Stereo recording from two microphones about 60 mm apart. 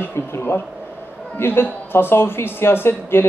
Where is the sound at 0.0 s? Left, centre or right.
Left.